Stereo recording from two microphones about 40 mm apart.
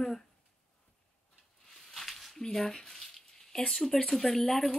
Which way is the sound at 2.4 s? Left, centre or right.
Centre.